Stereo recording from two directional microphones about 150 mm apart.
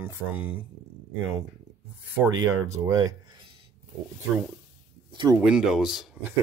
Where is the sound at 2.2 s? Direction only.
20° right (ahead or behind).